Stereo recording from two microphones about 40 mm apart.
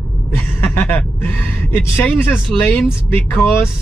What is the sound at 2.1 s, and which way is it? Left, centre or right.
Speech, left.